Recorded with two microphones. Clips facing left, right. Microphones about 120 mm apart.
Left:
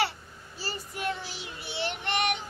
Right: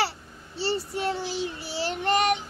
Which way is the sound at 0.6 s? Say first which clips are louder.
Right 9 dB; 30° right (ahead or behind).